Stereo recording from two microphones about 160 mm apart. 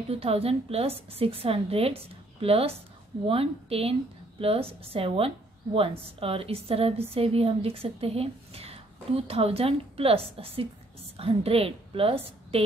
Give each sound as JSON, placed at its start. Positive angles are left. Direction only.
{"t": 0.1, "sound": "a woman's voice", "side_deg": -40}